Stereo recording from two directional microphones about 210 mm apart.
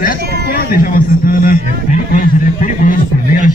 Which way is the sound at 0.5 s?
45° left (ahead or behind).